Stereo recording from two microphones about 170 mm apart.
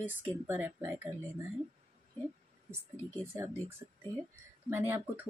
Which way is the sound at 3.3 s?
15° right (ahead or behind).